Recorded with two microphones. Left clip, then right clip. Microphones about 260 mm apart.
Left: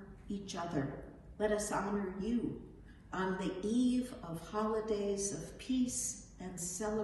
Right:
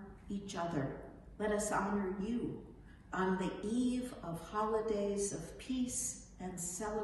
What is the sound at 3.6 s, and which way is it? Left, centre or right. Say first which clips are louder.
A woman's voice: left 3 dB; centre.